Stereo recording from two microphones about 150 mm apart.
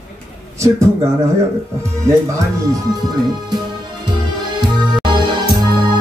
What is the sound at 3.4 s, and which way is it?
Music, 30° right (ahead or behind).